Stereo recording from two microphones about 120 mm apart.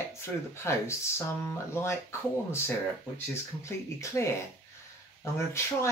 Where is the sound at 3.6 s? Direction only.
25° left (ahead or behind).